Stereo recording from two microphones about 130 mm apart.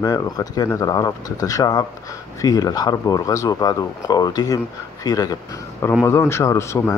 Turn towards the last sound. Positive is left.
turn(degrees=20)  # may be behind; listen again after turning